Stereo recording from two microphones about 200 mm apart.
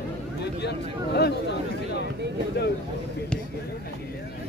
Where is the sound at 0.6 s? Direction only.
55° left (ahead or behind).